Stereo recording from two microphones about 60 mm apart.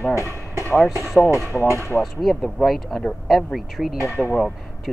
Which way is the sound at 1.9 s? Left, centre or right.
Centre.